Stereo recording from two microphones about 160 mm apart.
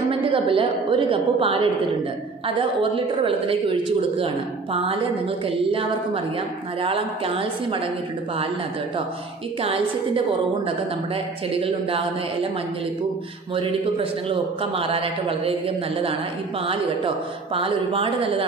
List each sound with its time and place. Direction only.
0.2 s a man's voice: 35° right (ahead or behind)
9.6 s a man's voice: 35° right (ahead or behind)
11.5 s a man's voice: 35° right (ahead or behind)
13.6 s a man's voice: 35° right (ahead or behind)
17.6 s a man's voice: 35° right (ahead or behind)